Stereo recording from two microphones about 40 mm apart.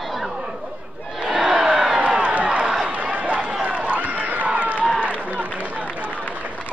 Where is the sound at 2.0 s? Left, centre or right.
Right.